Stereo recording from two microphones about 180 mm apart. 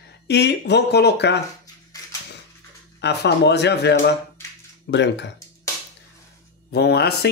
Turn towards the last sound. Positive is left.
turn(degrees=65)  # may be behind; listen again after turning